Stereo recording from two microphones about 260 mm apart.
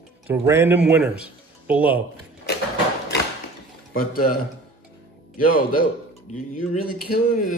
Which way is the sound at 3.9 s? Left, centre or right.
Left.